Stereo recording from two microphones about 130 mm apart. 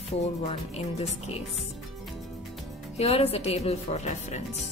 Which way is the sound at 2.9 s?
50° left (ahead or behind).